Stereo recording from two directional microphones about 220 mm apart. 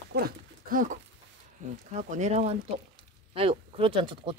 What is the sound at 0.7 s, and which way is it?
Speech, 40° right (ahead or behind).